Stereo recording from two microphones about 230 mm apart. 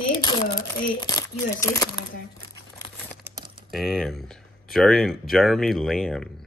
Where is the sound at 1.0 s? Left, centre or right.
Centre.